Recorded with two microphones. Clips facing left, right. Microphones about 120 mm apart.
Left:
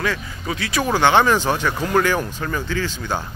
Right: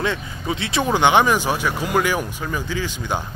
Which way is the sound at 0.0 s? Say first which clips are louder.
Right 1 dB; 25° right (ahead or behind).